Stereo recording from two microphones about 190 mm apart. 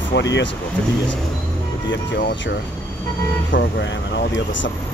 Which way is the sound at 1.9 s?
70° left (ahead or behind).